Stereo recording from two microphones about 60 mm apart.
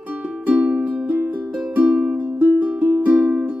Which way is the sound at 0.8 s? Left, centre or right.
Right.